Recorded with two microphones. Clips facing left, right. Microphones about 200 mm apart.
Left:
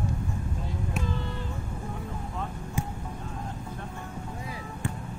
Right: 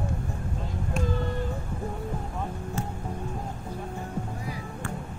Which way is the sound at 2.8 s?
15° left (ahead or behind).